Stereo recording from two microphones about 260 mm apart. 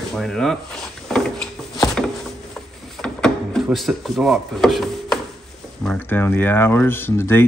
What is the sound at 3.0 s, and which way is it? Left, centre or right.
Wood, centre.